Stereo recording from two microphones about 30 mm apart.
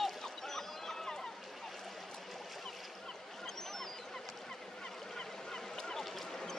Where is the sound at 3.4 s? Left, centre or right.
Centre.